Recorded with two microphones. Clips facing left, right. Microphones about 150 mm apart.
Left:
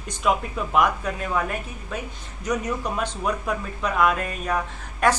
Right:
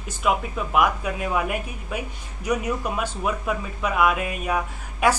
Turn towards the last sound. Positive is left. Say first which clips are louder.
# even
turn(degrees=-10)  # may be behind; listen again after turning